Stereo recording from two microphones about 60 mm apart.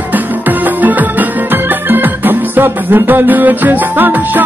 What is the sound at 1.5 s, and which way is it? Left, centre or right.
Music, right.